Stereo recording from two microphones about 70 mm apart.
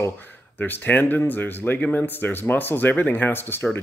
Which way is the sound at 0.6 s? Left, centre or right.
Left.